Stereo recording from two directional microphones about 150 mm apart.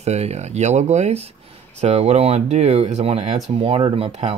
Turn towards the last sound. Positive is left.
turn(degrees=-40)  # may be behind; listen again after turning